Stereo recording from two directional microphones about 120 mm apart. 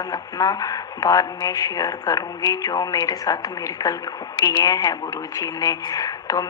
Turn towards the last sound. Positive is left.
turn(degrees=30)  # may be behind; listen again after turning